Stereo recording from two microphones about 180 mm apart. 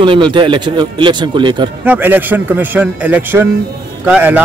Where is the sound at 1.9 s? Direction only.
10° right (ahead or behind).